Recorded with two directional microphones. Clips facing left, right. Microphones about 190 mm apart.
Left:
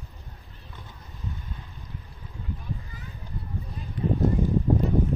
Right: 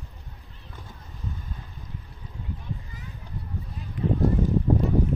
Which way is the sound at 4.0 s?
35° left (ahead or behind).